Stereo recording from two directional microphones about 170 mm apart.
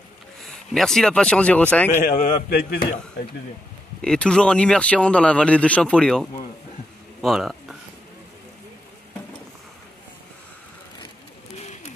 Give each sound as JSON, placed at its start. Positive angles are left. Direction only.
{"t": 0.4, "sound": "speech", "side_deg": 0}
{"t": 2.0, "sound": "a man's voice", "side_deg": 55}
{"t": 4.0, "sound": "speech", "side_deg": 5}
{"t": 11.5, "sound": "bird", "side_deg": 40}